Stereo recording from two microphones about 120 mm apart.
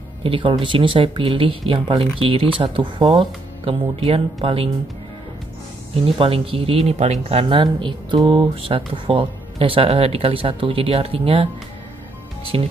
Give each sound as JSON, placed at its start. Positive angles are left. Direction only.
{"t": 0.2, "sound": "speech", "side_deg": -45}
{"t": 6.0, "sound": "speech", "side_deg": -50}
{"t": 12.5, "sound": "speech", "side_deg": -55}